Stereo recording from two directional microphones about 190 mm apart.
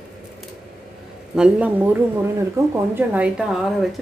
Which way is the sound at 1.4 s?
5° right (ahead or behind).